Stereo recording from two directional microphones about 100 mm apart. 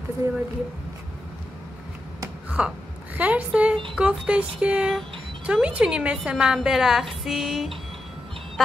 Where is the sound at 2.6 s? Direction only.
10° right (ahead or behind).